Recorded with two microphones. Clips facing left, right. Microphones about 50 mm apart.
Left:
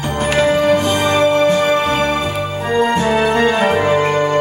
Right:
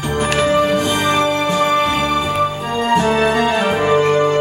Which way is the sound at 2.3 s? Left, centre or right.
Right.